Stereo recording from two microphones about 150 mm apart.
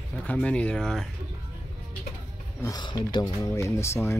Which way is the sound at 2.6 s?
25° left (ahead or behind).